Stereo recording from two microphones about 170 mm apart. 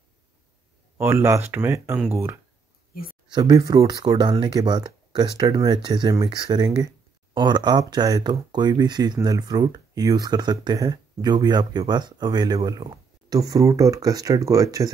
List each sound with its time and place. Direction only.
0.9 s speech: 15° right (ahead or behind)
2.9 s a sound: 55° left (ahead or behind)
3.3 s speech: 25° right (ahead or behind)